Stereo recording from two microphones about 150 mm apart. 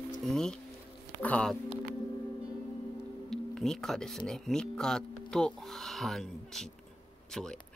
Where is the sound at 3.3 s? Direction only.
Centre (ahead or behind).